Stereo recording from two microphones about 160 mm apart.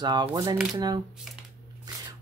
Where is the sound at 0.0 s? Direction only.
25° right (ahead or behind).